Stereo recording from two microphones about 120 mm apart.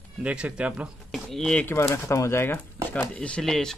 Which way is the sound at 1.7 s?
25° left (ahead or behind).